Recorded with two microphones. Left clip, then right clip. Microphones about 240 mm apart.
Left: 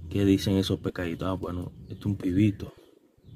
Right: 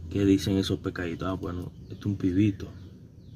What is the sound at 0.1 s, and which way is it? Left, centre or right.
Speech, centre.